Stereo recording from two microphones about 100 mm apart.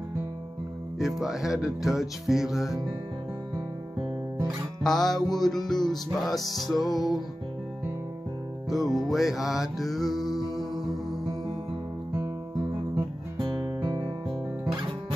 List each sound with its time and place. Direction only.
0.9 s music: 5° right (ahead or behind)
4.8 s music: 5° left (ahead or behind)
6.8 s music: 40° left (ahead or behind)
8.6 s music: centre (ahead or behind)
12.9 s music: 45° right (ahead or behind)